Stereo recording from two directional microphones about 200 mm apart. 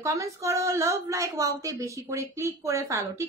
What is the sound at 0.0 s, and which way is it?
A woman's voice, 15° right (ahead or behind).